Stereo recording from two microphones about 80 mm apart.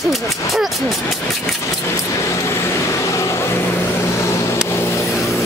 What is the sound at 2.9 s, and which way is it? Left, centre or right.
Vehicle, left.